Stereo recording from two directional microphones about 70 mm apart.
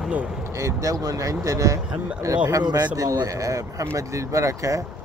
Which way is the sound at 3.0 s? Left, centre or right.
Right.